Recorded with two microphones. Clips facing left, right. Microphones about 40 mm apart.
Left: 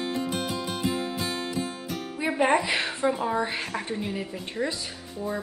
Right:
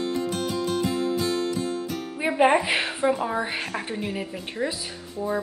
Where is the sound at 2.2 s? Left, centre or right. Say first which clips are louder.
Right 3 dB; centre.